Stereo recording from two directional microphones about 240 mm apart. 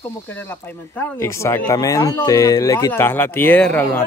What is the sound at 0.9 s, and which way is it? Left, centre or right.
Speech, centre.